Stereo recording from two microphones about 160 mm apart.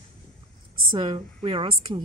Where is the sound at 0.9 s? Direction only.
30° right (ahead or behind).